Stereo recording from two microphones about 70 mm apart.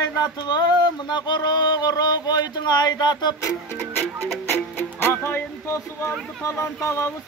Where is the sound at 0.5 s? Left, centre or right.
Left.